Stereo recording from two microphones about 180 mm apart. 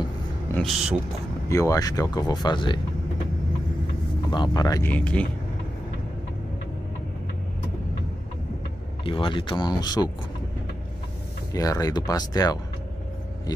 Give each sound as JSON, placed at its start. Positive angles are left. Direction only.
{"t": 0.5, "sound": "speech", "side_deg": 0}
{"t": 1.5, "sound": "speech", "side_deg": 20}
{"t": 4.3, "sound": "speech", "side_deg": 25}
{"t": 4.9, "sound": "speech", "side_deg": 5}
{"t": 9.0, "sound": "speech", "side_deg": 30}
{"t": 11.5, "sound": "speech", "side_deg": 20}